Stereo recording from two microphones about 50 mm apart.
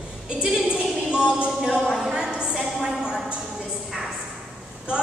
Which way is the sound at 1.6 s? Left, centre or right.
Centre.